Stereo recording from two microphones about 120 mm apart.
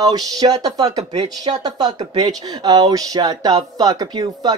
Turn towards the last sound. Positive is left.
turn(degrees=-35)  # may be behind; listen again after turning